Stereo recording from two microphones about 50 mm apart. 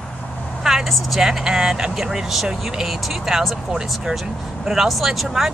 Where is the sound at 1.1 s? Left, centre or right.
Centre.